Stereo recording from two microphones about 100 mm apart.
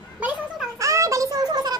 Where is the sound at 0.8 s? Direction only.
35° right (ahead or behind).